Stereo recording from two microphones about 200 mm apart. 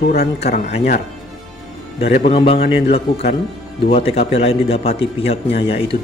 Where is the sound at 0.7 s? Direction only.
35° left (ahead or behind).